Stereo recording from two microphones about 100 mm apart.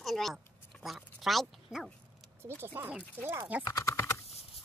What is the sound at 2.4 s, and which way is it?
Speech, 25° right (ahead or behind).